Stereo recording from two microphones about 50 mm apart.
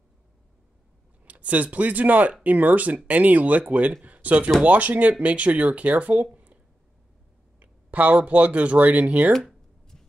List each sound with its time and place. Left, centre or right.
1.2 s speech: right
6.3 s a sound: right
7.6 s speech: right